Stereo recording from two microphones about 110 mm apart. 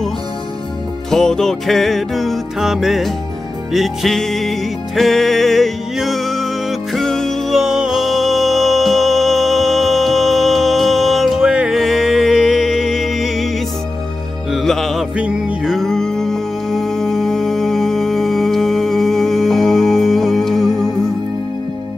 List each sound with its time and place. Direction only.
1.1 s music: 5° left (ahead or behind)
14.5 s music: centre (ahead or behind)
15.1 s music: 10° right (ahead or behind)